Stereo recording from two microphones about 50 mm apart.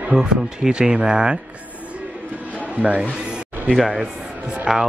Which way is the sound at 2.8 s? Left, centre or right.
Right.